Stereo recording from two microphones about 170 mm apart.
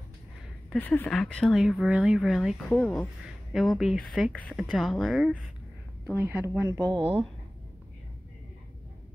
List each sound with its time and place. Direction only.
0.7 s speech: 10° left (ahead or behind)
4.3 s a woman's voice: 10° left (ahead or behind)
6.1 s speech: 10° right (ahead or behind)
6.9 s speech: 30° right (ahead or behind)